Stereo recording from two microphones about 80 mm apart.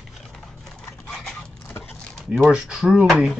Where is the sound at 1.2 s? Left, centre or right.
Left.